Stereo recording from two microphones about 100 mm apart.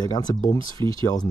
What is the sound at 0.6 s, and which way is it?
Speech, 55° right (ahead or behind).